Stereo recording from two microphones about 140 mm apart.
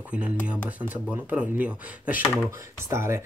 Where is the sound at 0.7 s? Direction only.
10° right (ahead or behind).